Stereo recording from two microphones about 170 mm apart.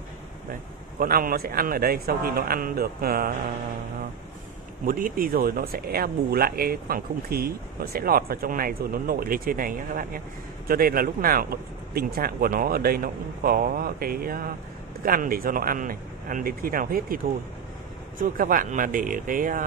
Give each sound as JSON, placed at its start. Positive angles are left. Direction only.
{"t": 0.9, "sound": "speech", "side_deg": -60}
{"t": 4.8, "sound": "speech", "side_deg": -55}
{"t": 18.2, "sound": "speech", "side_deg": -50}